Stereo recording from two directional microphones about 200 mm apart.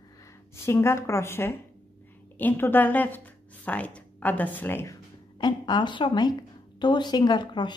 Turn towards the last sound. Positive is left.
turn(degrees=20)  # may be behind; listen again after turning